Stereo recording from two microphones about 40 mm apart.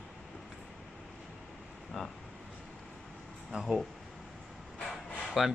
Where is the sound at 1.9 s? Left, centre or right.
Centre.